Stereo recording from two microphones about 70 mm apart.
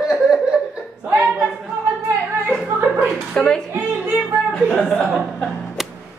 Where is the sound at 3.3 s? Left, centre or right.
Centre.